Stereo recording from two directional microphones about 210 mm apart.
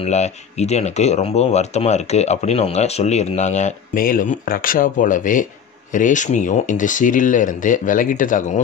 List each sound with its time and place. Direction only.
0.0 s speech: 30° left (ahead or behind)